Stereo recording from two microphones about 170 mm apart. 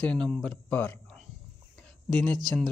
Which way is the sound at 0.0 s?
5° left (ahead or behind).